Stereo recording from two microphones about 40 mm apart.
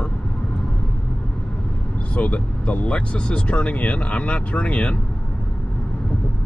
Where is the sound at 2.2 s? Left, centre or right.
Left.